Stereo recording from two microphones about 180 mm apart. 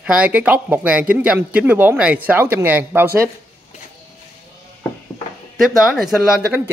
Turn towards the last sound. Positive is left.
turn(degrees=-5)  # may be behind; listen again after turning